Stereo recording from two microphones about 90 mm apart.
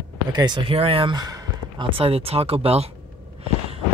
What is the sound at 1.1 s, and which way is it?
Speech, 45° right (ahead or behind).